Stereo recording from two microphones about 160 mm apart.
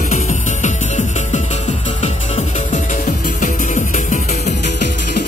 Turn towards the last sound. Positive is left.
turn(degrees=50)  # may be behind; listen again after turning